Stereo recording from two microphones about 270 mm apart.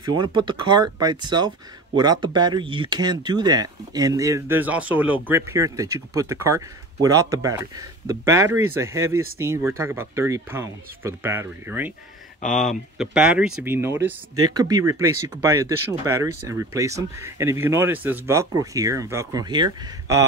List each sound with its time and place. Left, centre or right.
0.1 s speech: centre